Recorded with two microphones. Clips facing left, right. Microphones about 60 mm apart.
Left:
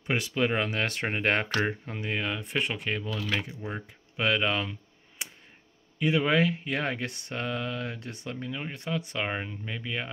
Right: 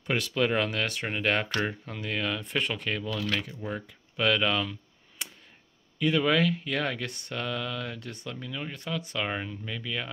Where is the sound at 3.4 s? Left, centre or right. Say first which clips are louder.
Right 1 dB; centre.